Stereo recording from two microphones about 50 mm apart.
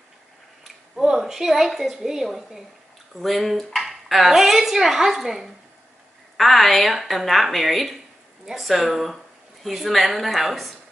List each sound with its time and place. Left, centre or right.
1.0 s a woman's voice: centre